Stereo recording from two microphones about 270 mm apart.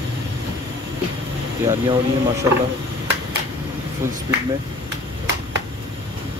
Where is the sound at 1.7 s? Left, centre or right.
Centre.